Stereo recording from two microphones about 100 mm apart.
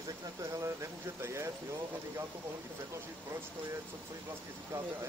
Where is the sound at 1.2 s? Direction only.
30° right (ahead or behind).